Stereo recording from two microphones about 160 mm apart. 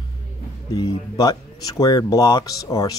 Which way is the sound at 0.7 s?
25° left (ahead or behind).